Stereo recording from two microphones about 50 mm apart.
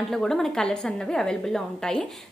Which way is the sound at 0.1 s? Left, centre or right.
Centre.